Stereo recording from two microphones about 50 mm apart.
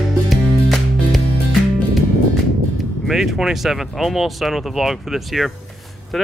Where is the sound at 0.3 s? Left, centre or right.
Centre.